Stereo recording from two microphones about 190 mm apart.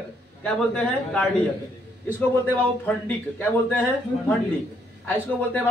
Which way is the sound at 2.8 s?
10° left (ahead or behind).